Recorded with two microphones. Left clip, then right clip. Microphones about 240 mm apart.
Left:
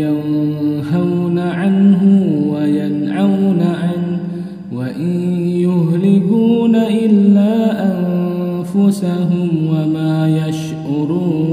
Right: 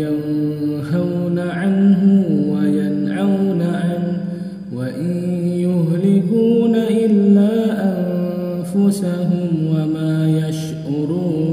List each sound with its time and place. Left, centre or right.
1.6 s mantra: centre
5.4 s mantra: centre
8.7 s mantra: centre